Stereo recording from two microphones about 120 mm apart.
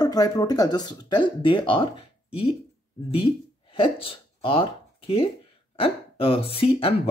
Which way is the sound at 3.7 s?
45° left (ahead or behind).